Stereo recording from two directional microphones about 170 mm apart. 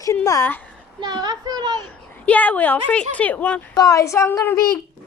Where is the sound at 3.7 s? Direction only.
20° left (ahead or behind).